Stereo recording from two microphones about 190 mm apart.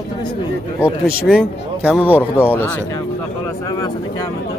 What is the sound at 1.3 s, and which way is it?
Speech, 5° right (ahead or behind).